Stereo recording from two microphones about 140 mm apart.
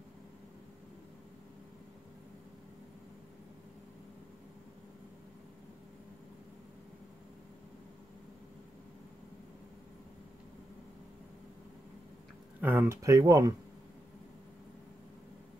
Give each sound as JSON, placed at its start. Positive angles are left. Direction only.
{"t": 12.5, "sound": "speech", "side_deg": -15}